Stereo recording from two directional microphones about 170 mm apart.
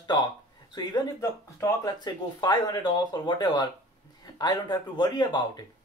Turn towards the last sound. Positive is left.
turn(degrees=25)  # may be behind; listen again after turning